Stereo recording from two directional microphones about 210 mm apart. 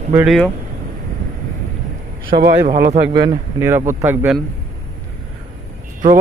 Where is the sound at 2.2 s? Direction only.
50° right (ahead or behind).